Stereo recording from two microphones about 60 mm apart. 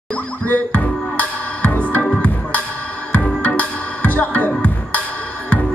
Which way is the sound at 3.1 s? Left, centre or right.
Left.